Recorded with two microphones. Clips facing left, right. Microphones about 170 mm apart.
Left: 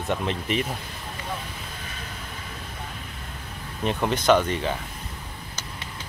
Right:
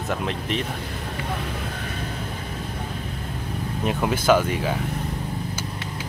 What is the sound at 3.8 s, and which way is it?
Speech, 5° right (ahead or behind).